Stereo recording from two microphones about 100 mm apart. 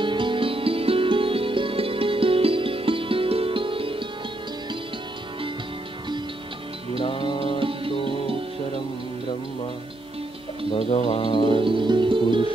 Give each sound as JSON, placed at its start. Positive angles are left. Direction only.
{"t": 0.0, "sound": "music", "side_deg": -55}
{"t": 7.1, "sound": "music", "side_deg": 55}
{"t": 7.5, "sound": "music", "side_deg": -65}
{"t": 10.7, "sound": "music", "side_deg": 70}
{"t": 11.5, "sound": "music", "side_deg": -55}